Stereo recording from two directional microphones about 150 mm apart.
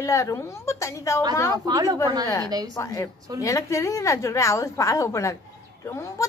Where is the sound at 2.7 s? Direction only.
20° left (ahead or behind).